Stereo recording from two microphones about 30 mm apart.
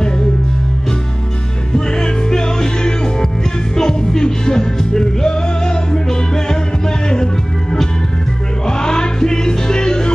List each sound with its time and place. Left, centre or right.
1.7 s music: left
8.6 s music: left